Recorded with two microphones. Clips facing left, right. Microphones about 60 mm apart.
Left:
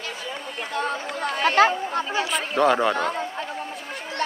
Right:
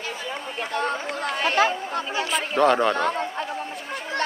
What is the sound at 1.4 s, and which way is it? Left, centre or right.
Speech, left.